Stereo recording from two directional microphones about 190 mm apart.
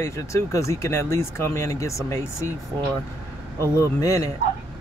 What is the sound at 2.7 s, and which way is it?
Speech, 20° right (ahead or behind).